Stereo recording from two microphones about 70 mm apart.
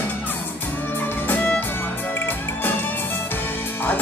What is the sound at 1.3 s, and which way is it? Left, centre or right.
Music, left.